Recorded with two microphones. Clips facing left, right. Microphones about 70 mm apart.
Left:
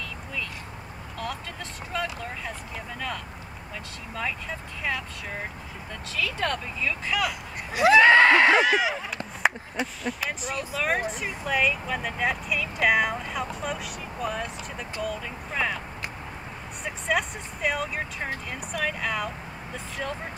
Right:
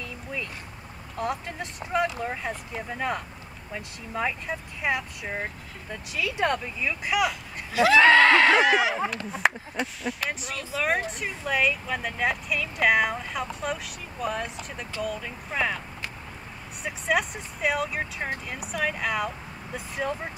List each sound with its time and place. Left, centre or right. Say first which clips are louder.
1.1 s speech: right 4 dB; right
7.7 s a sound: left 1 dB; left
8.5 s speech: right 1 dB; centre
16.8 s speech: right 1 dB; centre